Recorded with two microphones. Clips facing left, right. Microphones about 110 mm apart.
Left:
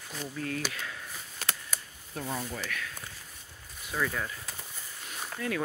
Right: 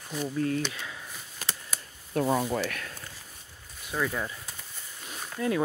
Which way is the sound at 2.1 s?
65° right (ahead or behind).